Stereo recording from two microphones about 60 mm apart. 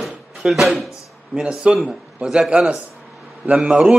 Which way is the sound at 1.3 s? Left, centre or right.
Centre.